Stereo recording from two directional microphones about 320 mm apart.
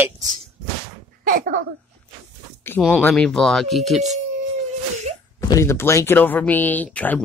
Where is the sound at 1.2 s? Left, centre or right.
Right.